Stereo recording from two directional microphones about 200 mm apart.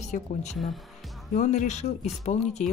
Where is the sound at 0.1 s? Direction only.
40° left (ahead or behind).